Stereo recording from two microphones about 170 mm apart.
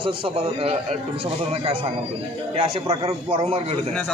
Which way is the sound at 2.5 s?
35° right (ahead or behind).